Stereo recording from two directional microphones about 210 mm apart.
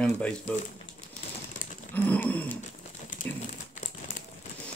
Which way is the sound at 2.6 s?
40° left (ahead or behind).